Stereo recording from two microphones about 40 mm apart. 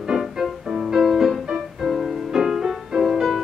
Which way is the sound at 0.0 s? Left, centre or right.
Centre.